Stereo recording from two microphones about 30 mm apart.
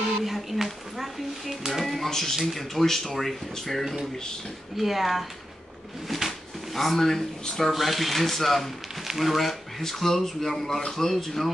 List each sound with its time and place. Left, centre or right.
0.2 s a sound: centre
0.9 s speech: centre
2.0 s speech: centre
6.0 s a sound: centre
7.4 s speech: centre
7.7 s speech: centre